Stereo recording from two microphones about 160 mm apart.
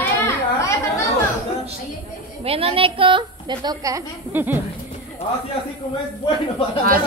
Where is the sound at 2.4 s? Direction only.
35° right (ahead or behind); by 4.6 s 15° right (ahead or behind).